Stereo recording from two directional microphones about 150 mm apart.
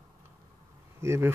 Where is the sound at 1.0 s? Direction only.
20° right (ahead or behind).